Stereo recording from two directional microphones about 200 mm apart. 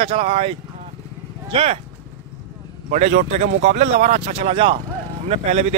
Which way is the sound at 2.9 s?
35° right (ahead or behind).